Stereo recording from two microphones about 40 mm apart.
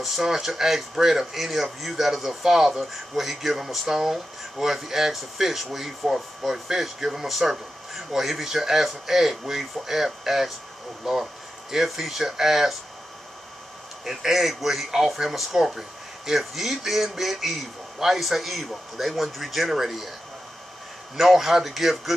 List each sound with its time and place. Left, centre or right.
0.0 s speech: centre
14.0 s speech: centre
21.2 s speech: centre